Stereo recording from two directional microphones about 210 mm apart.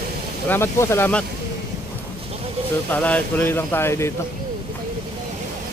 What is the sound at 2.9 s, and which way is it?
Speech, 5° left (ahead or behind).